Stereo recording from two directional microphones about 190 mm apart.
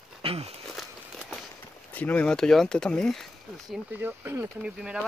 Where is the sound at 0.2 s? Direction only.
30° right (ahead or behind).